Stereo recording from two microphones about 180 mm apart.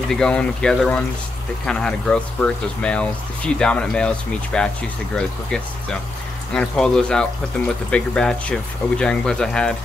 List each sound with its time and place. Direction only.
0.1 s speech: 5° left (ahead or behind)